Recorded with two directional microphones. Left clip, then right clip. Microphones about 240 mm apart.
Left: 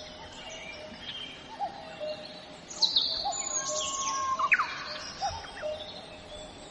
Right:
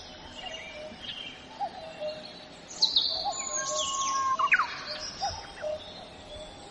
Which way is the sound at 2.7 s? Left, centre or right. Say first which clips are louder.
Right 1 dB; centre.